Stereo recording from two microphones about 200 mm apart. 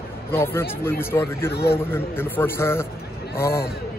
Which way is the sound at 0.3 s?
10° left (ahead or behind).